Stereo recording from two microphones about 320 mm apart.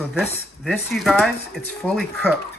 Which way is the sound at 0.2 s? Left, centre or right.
Centre.